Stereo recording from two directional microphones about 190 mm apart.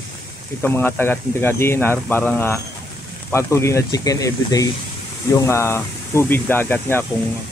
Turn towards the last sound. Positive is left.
turn(degrees=10)  # may be behind; listen again after turning